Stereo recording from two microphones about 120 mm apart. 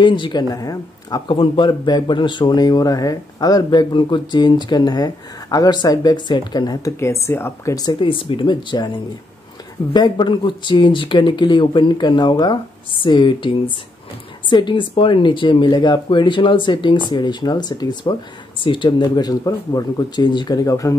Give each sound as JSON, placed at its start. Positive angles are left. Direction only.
{"t": 0.0, "sound": "speech", "side_deg": 40}
{"t": 7.7, "sound": "speech", "side_deg": 35}